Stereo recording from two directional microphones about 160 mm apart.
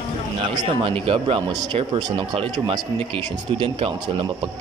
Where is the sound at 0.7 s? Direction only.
35° right (ahead or behind).